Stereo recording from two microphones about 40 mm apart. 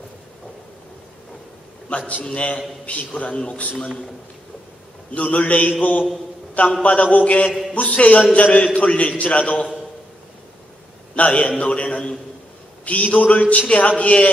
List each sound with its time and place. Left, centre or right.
1.9 s a man's voice: left
5.1 s a man's voice: left
11.1 s a sound: left
12.8 s a man's voice: left